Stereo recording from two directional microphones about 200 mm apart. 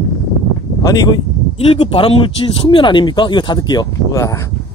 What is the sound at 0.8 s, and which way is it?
Speech, 20° left (ahead or behind).